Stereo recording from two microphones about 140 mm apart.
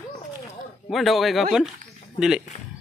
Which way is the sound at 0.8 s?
Centre (ahead or behind).